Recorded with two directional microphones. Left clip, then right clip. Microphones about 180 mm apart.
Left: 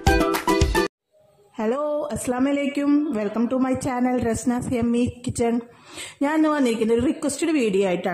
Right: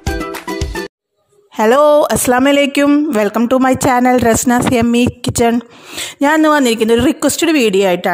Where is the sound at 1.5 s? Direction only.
65° right (ahead or behind).